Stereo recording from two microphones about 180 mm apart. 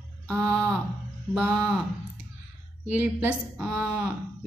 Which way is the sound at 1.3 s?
10° right (ahead or behind).